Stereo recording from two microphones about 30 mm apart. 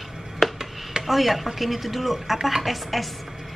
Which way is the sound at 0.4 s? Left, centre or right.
Centre.